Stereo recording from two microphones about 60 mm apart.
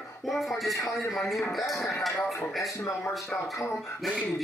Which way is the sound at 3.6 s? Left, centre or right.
Left.